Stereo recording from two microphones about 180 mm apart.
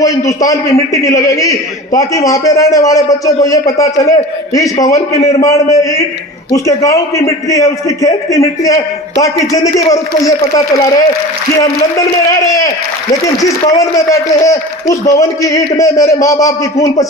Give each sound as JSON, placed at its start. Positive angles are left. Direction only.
{"t": 0.4, "sound": "a man's voice", "side_deg": 20}
{"t": 13.4, "sound": "a man's voice", "side_deg": 20}